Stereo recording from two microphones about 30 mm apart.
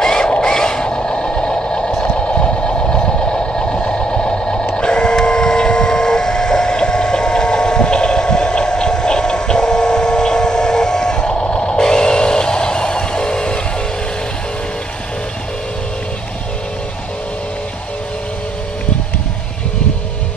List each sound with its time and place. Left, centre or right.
0.0 s a sound: left
1.6 s vehicle: left
2.0 s vehicle: left